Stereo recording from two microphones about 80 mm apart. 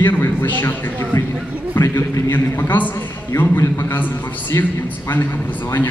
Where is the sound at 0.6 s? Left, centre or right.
Left.